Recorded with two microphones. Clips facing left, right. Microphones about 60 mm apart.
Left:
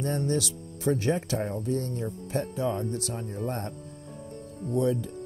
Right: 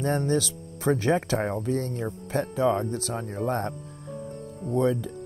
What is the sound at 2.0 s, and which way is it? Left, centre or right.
Speech, right.